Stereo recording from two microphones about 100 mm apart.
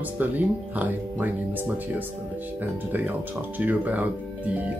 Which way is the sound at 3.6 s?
15° right (ahead or behind).